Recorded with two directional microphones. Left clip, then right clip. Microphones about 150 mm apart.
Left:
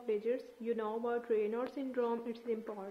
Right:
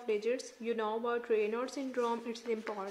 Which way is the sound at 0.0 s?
15° right (ahead or behind).